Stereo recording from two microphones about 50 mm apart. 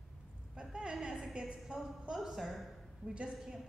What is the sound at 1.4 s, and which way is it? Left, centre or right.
A woman's voice, centre.